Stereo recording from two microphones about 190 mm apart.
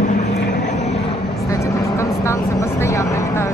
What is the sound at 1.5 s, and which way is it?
Vehicle, 15° left (ahead or behind).